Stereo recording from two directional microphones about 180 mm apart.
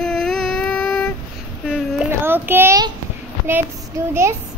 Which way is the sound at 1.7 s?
10° right (ahead or behind).